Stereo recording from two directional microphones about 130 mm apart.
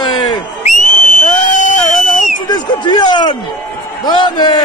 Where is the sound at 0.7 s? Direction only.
75° left (ahead or behind).